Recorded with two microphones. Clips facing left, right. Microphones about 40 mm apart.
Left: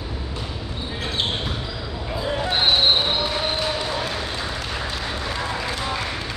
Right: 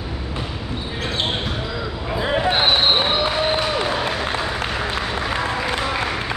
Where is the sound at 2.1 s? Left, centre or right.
Right.